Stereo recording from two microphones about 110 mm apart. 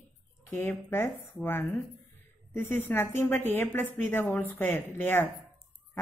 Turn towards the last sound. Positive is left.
turn(degrees=20)  # may be behind; listen again after turning